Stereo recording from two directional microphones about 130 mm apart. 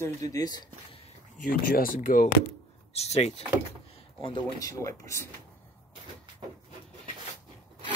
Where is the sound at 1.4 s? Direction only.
90° left.